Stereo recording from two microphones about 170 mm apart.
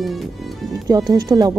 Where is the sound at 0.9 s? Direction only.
20° right (ahead or behind).